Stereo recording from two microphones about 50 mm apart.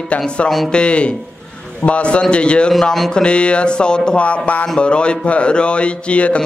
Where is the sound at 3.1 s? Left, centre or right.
Centre.